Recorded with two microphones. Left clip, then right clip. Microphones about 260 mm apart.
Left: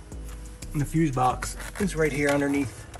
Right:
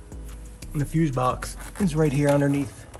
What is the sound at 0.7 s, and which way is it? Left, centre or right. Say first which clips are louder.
Speech: even; centre.